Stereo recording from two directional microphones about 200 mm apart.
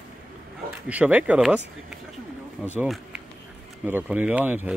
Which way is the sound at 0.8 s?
5° right (ahead or behind).